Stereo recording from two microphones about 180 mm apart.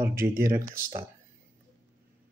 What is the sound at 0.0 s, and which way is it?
Speech, 15° right (ahead or behind).